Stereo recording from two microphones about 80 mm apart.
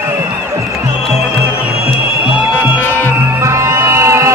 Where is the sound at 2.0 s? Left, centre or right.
Centre.